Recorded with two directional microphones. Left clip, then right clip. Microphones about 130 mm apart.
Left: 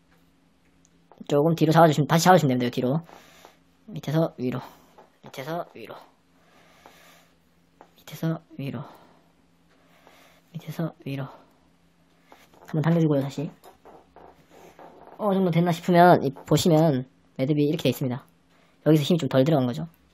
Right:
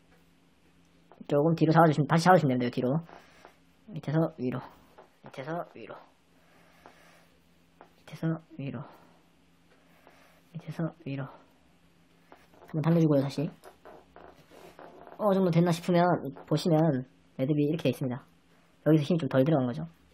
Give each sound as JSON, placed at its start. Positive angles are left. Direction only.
{"t": 1.2, "sound": "speech", "side_deg": 15}
{"t": 8.0, "sound": "speech", "side_deg": 20}
{"t": 10.6, "sound": "speech", "side_deg": 15}
{"t": 12.6, "sound": "a sound", "side_deg": 40}
{"t": 13.1, "sound": "speech", "side_deg": 0}
{"t": 15.1, "sound": "speech", "side_deg": 15}
{"t": 16.4, "sound": "speech", "side_deg": 35}
{"t": 16.7, "sound": "speech", "side_deg": 25}